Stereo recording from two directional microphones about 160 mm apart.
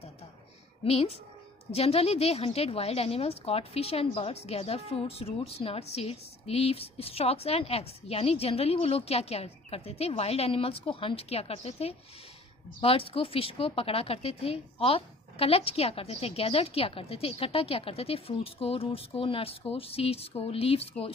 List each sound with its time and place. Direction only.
0.8 s a woman's voice: 40° left (ahead or behind)